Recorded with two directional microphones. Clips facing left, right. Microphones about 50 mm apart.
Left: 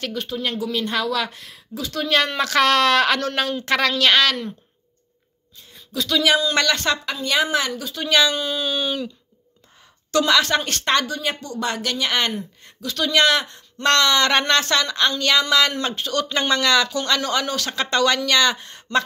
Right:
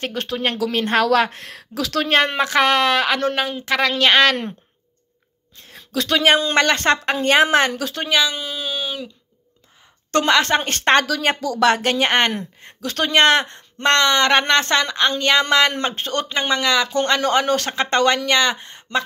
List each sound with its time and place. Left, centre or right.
0.1 s a woman's voice: right
2.0 s speech: right; by 3.9 s centre
3.9 s speech: right
5.6 s a woman's voice: right
8.1 s speech: centre
10.1 s speech: right
11.2 s a woman's voice: right
16.3 s speech: centre
16.9 s speech: right